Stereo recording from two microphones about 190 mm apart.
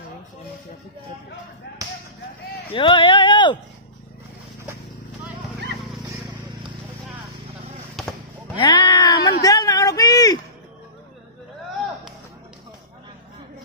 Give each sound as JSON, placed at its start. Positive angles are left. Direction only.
{"t": 2.7, "sound": "speech", "side_deg": 25}
{"t": 8.0, "sound": "basketball bounce", "side_deg": 0}
{"t": 8.5, "sound": "a sound", "side_deg": 20}